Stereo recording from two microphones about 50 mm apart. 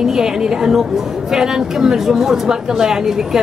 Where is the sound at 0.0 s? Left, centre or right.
Centre.